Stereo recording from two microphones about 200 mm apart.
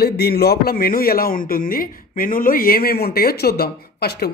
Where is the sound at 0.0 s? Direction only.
50° left (ahead or behind).